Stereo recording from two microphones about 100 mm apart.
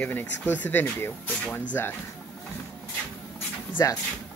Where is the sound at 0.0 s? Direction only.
15° left (ahead or behind).